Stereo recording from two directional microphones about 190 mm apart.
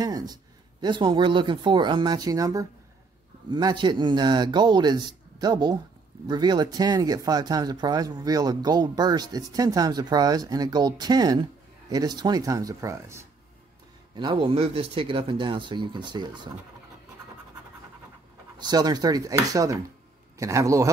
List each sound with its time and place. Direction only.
0.0 s speech: 20° right (ahead or behind)
18.6 s a man's voice: 20° right (ahead or behind)